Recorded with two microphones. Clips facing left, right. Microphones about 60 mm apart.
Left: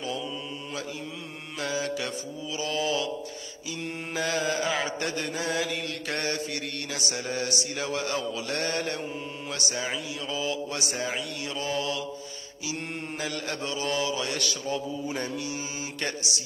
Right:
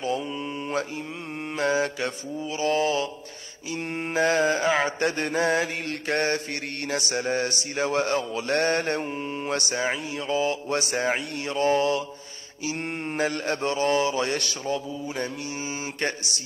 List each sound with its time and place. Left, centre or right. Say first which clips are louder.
1.6 s mantra: right 5 dB; right